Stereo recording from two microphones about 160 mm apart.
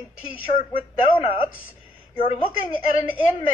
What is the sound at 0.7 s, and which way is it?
Speech, 35° left (ahead or behind).